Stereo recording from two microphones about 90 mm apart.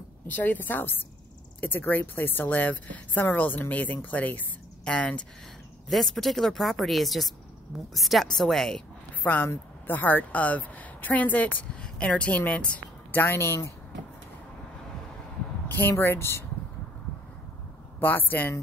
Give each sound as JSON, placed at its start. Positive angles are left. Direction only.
{"t": 0.3, "sound": "a woman's voice", "side_deg": 20}
{"t": 9.2, "sound": "speech", "side_deg": 20}
{"t": 13.1, "sound": "speech", "side_deg": 25}
{"t": 15.7, "sound": "speech", "side_deg": 25}
{"t": 18.0, "sound": "speech", "side_deg": 20}